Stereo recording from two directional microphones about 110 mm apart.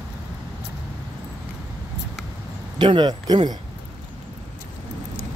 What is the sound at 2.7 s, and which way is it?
Speech, 45° right (ahead or behind).